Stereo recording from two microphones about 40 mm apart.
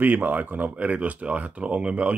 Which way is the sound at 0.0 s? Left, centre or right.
Right.